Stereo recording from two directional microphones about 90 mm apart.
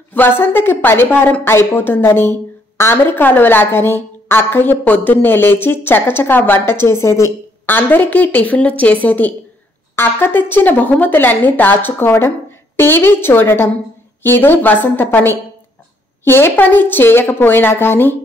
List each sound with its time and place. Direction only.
0.1 s a woman's voice: 20° left (ahead or behind)